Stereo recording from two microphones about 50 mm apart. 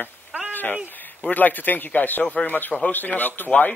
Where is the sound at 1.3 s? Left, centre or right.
Left.